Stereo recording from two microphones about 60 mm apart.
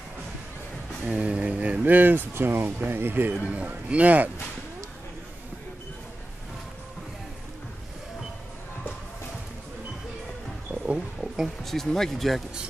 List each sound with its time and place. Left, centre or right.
1.0 s speech: right
3.4 s speech: right
11.1 s a sound: centre
11.6 s speech: centre